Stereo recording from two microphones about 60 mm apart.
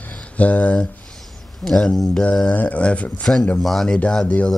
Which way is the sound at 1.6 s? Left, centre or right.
Centre.